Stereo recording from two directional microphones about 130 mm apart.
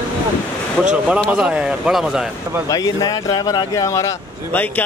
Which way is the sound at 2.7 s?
25° left (ahead or behind).